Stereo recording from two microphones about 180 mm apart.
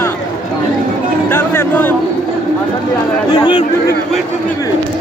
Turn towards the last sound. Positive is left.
turn(degrees=30)  # may be behind; listen again after turning